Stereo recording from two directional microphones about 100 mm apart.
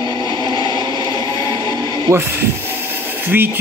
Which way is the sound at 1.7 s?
40° left (ahead or behind).